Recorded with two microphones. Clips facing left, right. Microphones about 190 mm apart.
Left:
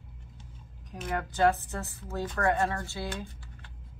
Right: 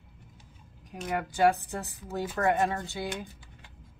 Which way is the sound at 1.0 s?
10° right (ahead or behind).